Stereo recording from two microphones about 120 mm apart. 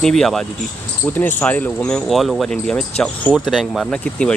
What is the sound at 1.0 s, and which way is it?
Speech, 15° left (ahead or behind).